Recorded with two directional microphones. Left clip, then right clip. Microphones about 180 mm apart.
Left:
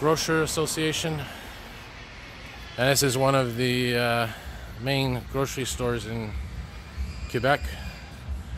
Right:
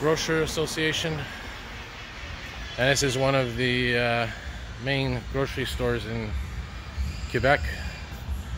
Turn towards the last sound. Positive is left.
turn(degrees=10)  # may be behind; listen again after turning